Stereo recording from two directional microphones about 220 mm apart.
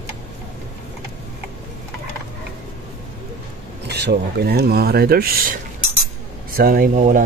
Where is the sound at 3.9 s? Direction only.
50° right (ahead or behind).